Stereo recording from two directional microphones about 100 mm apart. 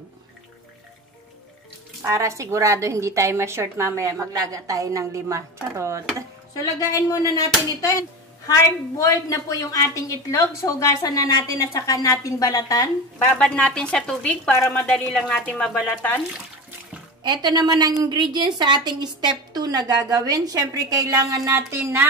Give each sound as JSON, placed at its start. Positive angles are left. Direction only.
{"t": 2.0, "sound": "a woman's voice", "side_deg": -30}
{"t": 6.5, "sound": "a woman's voice", "side_deg": 35}
{"t": 13.3, "sound": "a woman's voice", "side_deg": 10}
{"t": 17.2, "sound": "a woman's voice", "side_deg": -45}